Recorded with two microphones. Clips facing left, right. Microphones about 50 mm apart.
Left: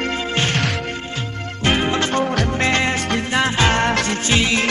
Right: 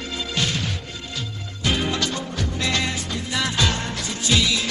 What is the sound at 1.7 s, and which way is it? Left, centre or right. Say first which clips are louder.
Music: left 5 dB; left.